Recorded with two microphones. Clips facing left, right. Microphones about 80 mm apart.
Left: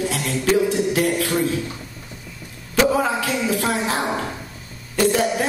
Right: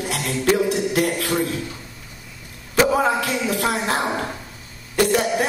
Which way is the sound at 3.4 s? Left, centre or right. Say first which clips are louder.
Left 1 dB; right.